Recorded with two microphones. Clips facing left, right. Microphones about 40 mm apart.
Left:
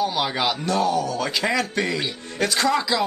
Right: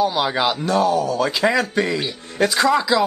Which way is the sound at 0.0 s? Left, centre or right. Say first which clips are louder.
Right 4 dB; centre.